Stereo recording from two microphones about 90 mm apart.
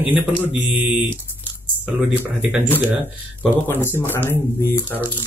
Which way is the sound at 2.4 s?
15° right (ahead or behind).